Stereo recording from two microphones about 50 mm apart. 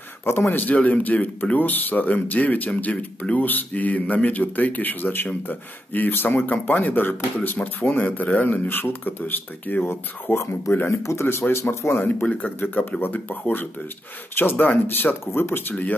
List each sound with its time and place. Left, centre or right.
0.2 s speech: left
0.5 s speech: left
7.5 s speech: left
10.9 s speech: left
11.7 s speech: left
12.0 s speech: left
12.5 s speech: left